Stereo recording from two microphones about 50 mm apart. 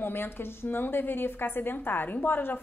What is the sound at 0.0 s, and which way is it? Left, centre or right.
A woman's voice, left.